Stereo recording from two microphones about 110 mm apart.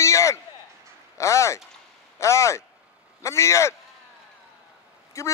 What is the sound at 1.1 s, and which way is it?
Speech, 25° left (ahead or behind).